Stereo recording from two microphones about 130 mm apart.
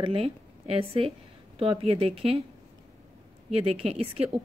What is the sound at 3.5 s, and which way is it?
Speech, 50° right (ahead or behind).